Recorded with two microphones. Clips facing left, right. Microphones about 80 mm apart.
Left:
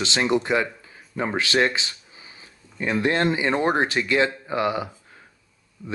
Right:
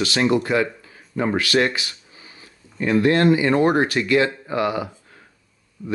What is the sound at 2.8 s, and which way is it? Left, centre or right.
Speech, left.